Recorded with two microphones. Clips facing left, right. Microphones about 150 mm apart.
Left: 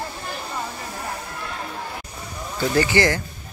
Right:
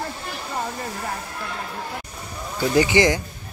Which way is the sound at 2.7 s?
15° right (ahead or behind).